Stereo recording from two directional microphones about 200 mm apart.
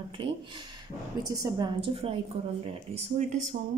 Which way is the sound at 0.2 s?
25° right (ahead or behind).